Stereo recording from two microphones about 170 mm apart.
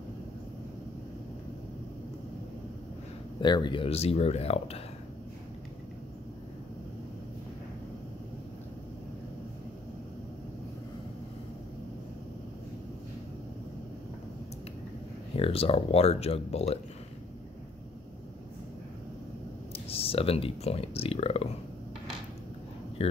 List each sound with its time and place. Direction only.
3.3 s speech: 25° left (ahead or behind)
15.3 s speech: 35° left (ahead or behind)
19.9 s speech: 35° left (ahead or behind)